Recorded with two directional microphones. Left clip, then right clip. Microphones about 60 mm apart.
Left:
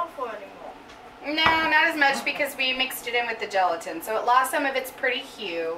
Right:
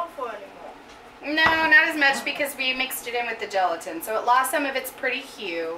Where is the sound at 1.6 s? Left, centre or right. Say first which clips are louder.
Right 3 dB; centre.